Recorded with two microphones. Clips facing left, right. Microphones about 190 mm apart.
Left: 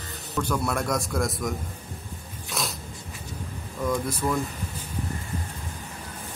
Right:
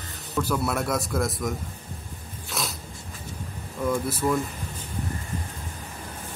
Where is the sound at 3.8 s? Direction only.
5° right (ahead or behind).